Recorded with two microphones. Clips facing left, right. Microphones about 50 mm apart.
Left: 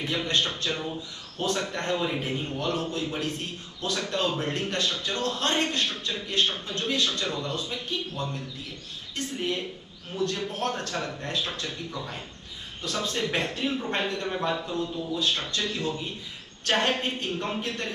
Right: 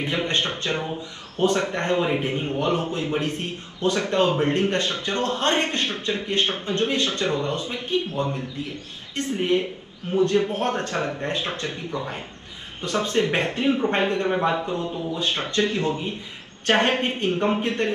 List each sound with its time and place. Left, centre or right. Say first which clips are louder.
0.0 s a man's voice: right 3 dB; right